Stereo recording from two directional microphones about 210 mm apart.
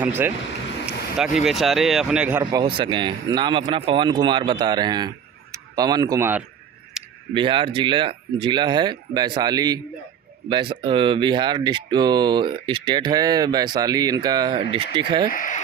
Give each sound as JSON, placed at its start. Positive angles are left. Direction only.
{"t": 1.1, "sound": "speech", "side_deg": 0}
{"t": 2.4, "sound": "speech", "side_deg": -20}
{"t": 7.0, "sound": "a sound", "side_deg": -5}
{"t": 7.3, "sound": "speech", "side_deg": -25}
{"t": 15.3, "sound": "speech", "side_deg": 40}